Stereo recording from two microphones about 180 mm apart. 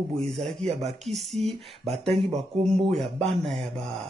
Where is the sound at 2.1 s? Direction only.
35° right (ahead or behind).